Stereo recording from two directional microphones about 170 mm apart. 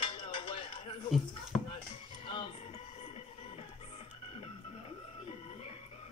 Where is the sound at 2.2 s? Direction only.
30° left (ahead or behind).